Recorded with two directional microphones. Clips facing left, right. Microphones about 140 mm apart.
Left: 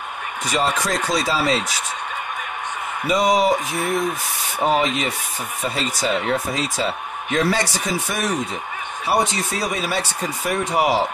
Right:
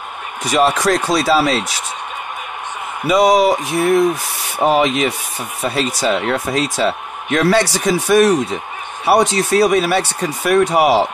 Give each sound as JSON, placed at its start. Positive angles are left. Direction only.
{"t": 0.5, "sound": "speech", "side_deg": -70}
{"t": 3.1, "sound": "speech", "side_deg": -75}